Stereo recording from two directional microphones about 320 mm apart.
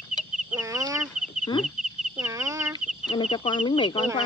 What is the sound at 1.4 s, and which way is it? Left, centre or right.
Speech, centre.